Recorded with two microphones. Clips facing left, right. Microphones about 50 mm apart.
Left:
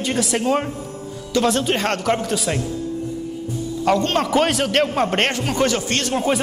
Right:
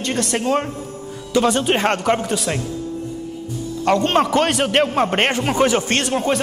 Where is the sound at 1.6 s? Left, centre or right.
Centre.